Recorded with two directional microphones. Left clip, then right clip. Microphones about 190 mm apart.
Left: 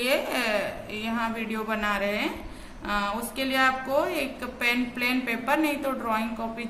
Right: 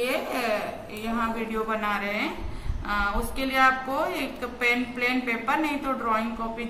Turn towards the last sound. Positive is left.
turn(degrees=65)  # may be behind; listen again after turning